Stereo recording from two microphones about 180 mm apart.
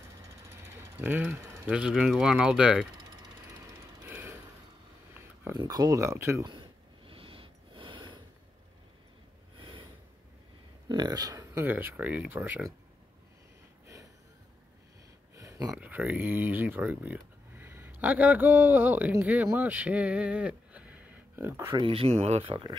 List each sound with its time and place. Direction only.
0.7 s a sound: 10° right (ahead or behind)
1.7 s speech: 5° right (ahead or behind)
3.3 s jackhammer: 10° right (ahead or behind)
5.6 s speech: 20° right (ahead or behind)
6.4 s a sound: 25° right (ahead or behind)
9.6 s snort: 30° right (ahead or behind)
10.9 s speech: 20° right (ahead or behind)
15.3 s a sound: 20° right (ahead or behind)
15.7 s speech: 10° right (ahead or behind)
21.8 s speech: 30° right (ahead or behind)